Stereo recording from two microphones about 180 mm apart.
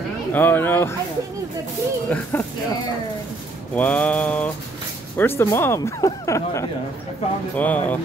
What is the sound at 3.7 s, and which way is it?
Speech, 10° left (ahead or behind).